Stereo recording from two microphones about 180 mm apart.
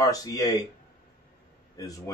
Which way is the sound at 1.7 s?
20° left (ahead or behind).